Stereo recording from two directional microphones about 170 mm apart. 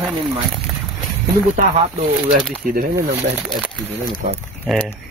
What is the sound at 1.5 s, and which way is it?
Speech, 40° right (ahead or behind).